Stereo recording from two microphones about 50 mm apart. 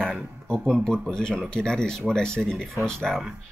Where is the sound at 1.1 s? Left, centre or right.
Centre.